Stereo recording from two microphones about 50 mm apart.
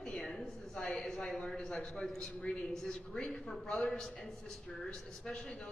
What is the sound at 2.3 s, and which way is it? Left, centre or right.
Speech, left.